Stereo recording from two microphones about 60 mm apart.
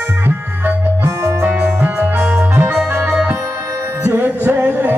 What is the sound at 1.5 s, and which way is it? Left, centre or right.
Music, right.